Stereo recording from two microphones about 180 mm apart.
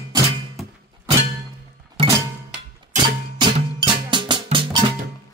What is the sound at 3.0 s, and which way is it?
Music, 25° right (ahead or behind).